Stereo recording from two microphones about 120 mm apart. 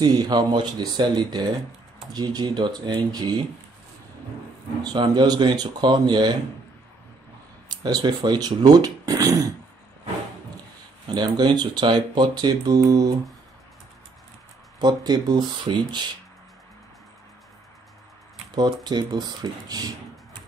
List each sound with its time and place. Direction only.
0.0 s speech: 35° right (ahead or behind)
5.1 s speech: 35° right (ahead or behind)
7.6 s speech: 35° right (ahead or behind)
11.1 s speech: 40° right (ahead or behind)
14.8 s speech: 35° right (ahead or behind)
18.5 s speech: 35° right (ahead or behind)